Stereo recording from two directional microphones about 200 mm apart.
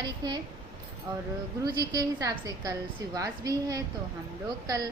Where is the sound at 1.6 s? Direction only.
20° right (ahead or behind).